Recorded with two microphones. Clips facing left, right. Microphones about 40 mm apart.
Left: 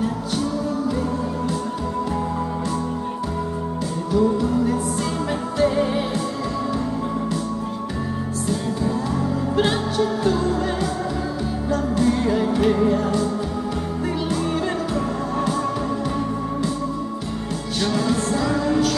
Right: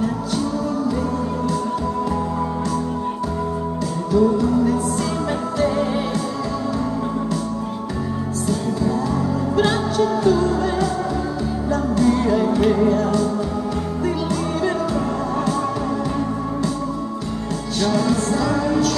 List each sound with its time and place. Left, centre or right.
4.1 s music: left
9.9 s music: centre
12.2 s music: centre
17.8 s music: left